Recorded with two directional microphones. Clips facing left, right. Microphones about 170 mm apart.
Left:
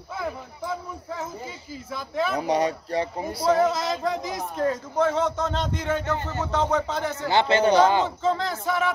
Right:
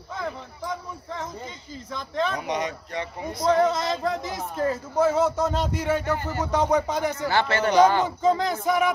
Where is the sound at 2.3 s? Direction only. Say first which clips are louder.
Left 5 dB; 35° left (ahead or behind).